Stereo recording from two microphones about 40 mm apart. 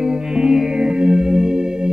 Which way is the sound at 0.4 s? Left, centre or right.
Centre.